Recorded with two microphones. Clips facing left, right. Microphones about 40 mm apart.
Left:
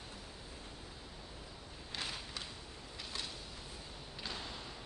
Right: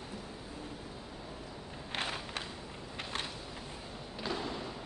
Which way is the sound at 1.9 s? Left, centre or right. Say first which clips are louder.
Right 6 dB; right.